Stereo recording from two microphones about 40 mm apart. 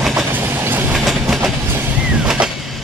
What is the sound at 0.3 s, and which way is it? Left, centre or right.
Train, right.